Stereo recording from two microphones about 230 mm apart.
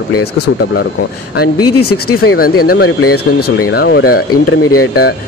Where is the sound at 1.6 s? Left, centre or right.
Left.